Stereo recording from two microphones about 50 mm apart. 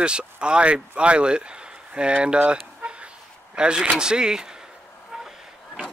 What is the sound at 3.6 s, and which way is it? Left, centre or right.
Speech, centre.